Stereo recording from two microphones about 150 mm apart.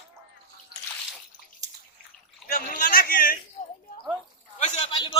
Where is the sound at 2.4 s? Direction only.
75° left (ahead or behind).